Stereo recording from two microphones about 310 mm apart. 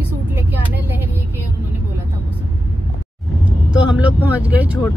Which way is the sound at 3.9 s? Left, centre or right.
Centre.